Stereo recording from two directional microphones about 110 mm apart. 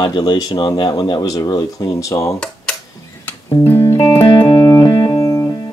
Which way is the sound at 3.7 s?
25° left (ahead or behind).